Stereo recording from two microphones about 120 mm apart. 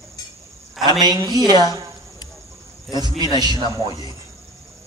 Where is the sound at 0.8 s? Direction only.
35° right (ahead or behind).